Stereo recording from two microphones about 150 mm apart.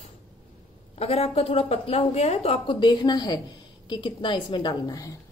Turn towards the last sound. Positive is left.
turn(degrees=25)  # may be behind; listen again after turning